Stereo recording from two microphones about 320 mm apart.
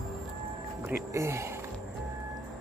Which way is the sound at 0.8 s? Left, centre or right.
Centre.